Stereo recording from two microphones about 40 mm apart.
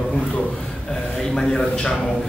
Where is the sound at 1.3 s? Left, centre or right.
Centre.